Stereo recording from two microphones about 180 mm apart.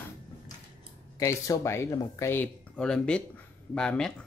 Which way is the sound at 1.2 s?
20° left (ahead or behind).